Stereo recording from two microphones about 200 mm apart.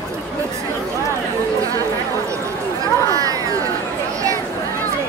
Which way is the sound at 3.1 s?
15° right (ahead or behind).